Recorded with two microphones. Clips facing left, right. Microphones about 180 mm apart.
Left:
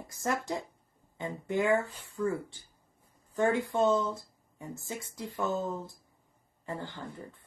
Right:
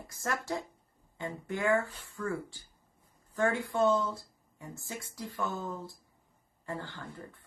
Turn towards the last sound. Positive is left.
turn(degrees=20)  # may be behind; listen again after turning